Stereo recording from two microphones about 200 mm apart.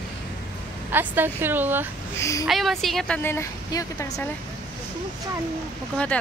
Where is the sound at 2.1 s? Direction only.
15° left (ahead or behind).